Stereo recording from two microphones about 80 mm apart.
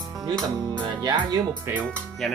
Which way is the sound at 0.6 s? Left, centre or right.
Right.